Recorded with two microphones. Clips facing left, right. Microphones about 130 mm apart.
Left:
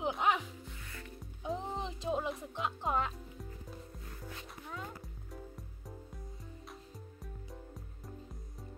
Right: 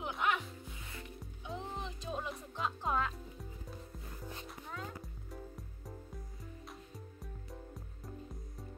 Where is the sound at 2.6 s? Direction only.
20° left (ahead or behind).